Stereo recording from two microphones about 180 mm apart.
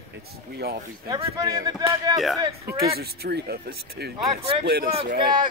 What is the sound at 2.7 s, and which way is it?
Speech, 60° right (ahead or behind).